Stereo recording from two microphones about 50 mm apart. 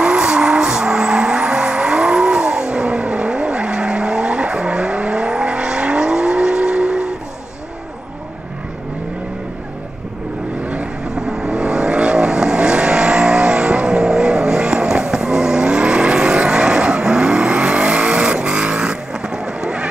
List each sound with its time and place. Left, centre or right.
0.0 s vehicle: centre
10.6 s vehicle: right
11.1 s vehicle: centre